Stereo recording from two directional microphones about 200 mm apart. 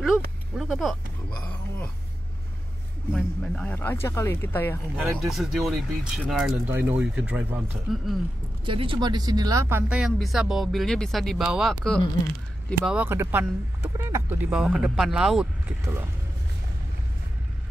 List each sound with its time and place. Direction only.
0.6 s speech: centre (ahead or behind)
3.1 s speech: 5° left (ahead or behind)
4.9 s speech: centre (ahead or behind)
8.6 s speech: 25° right (ahead or behind); by 15.4 s centre (ahead or behind)
15.8 s speech: 10° right (ahead or behind)